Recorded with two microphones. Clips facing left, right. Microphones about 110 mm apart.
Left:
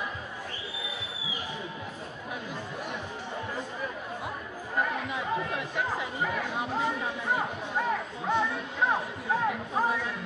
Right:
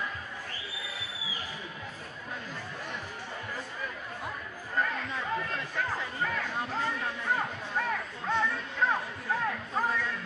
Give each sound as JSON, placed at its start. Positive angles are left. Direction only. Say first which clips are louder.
{"t": 4.7, "sound": "chatter", "louder": "left 2 dB", "side_deg": 15}